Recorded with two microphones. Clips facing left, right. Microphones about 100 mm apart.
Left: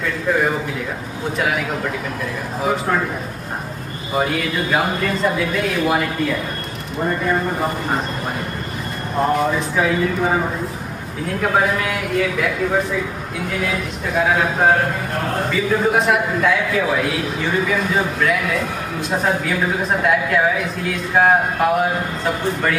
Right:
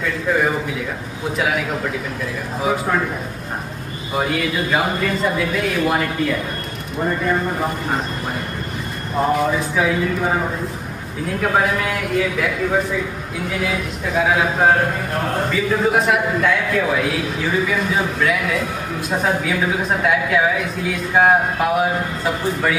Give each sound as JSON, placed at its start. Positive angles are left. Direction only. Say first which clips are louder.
{"t": 0.0, "sound": "speech", "louder": "even", "side_deg": 0}
{"t": 4.1, "sound": "speech", "louder": "even", "side_deg": 0}
{"t": 9.2, "sound": "speech", "louder": "even", "side_deg": 0}